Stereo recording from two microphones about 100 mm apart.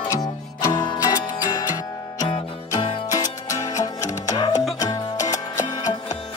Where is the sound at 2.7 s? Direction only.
50° left (ahead or behind).